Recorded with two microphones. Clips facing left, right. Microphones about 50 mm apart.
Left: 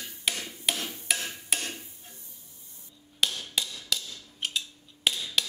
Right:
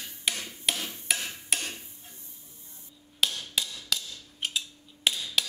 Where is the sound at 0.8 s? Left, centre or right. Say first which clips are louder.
Left 1 dB; left.